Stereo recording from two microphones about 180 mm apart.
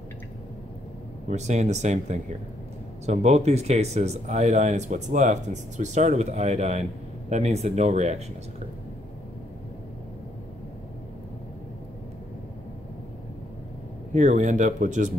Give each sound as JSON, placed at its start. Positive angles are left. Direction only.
{"t": 1.3, "sound": "speech", "side_deg": -40}
{"t": 14.1, "sound": "speech", "side_deg": -45}